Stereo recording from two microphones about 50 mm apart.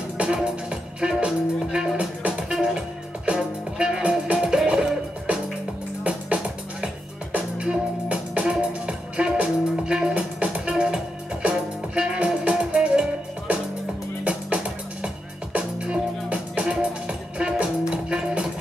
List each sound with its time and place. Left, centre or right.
0.2 s music: centre
1.2 s speech: centre
2.5 s music: centre
8.1 s music: right
14.2 s music: right